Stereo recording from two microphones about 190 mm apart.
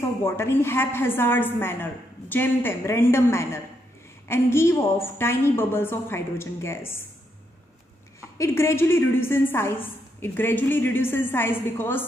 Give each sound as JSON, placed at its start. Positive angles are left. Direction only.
{"t": 0.0, "sound": "a woman's voice", "side_deg": 15}
{"t": 8.4, "sound": "a woman's voice", "side_deg": 15}